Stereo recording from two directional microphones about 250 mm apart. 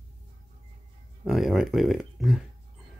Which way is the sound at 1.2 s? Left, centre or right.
Centre.